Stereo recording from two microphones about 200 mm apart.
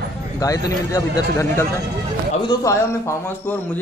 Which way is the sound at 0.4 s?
15° left (ahead or behind).